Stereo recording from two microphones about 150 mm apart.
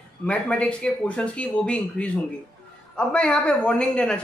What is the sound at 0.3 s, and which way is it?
A woman's voice, 5° left (ahead or behind).